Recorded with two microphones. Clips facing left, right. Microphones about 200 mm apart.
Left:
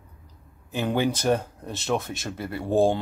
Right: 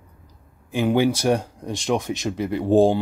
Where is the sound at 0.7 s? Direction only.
10° right (ahead or behind).